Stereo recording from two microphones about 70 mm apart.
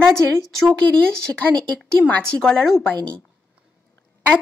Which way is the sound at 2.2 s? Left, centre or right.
Centre.